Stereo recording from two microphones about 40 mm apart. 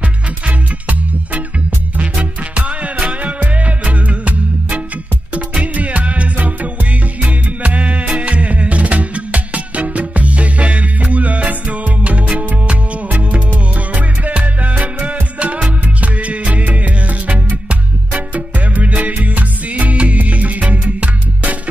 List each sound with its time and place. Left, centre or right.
0.5 s music: right
2.5 s music: right